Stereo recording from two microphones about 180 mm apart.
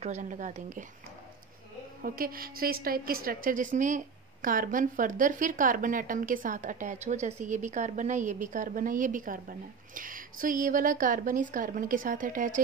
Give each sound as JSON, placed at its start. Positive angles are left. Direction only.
{"t": 0.0, "sound": "a woman's voice", "side_deg": -40}
{"t": 2.0, "sound": "a woman's voice", "side_deg": -55}